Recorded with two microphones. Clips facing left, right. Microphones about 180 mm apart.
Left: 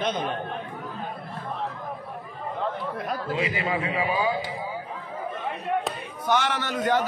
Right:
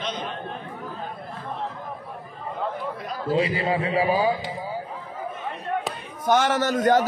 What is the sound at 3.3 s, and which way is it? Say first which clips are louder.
A man's voice: right 6 dB; 35° right (ahead or behind).